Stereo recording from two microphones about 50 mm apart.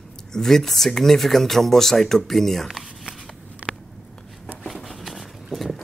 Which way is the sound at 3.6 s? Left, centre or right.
Right.